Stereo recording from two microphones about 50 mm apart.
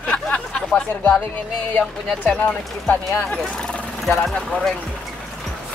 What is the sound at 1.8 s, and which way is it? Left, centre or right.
Speech, left.